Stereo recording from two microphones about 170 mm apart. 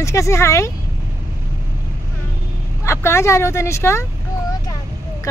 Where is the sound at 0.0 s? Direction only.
15° left (ahead or behind).